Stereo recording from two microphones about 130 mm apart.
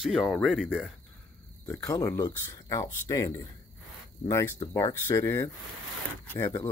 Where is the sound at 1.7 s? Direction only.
25° left (ahead or behind).